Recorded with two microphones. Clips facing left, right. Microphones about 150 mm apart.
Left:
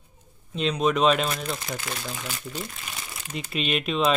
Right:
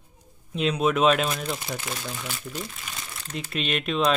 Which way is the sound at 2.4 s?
Centre (ahead or behind).